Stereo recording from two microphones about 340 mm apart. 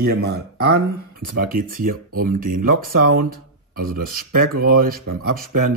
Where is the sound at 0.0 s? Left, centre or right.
Right.